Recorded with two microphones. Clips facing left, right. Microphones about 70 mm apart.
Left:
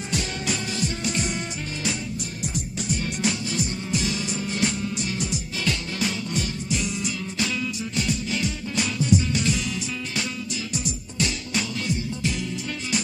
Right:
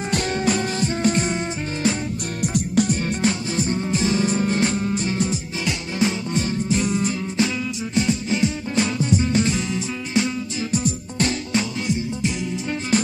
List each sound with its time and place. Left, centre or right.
0.1 s music: right
2.4 s music: right
3.0 s music: right
7.3 s music: right
10.7 s music: right
11.5 s music: right
12.9 s music: right